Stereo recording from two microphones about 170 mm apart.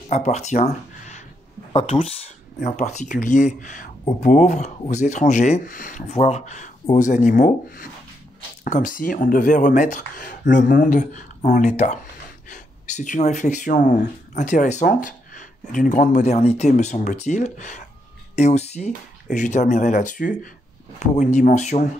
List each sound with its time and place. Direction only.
0.1 s speech: 40° left (ahead or behind)
1.7 s speech: 30° left (ahead or behind)